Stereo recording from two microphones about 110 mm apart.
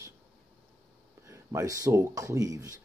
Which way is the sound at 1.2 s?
25° right (ahead or behind).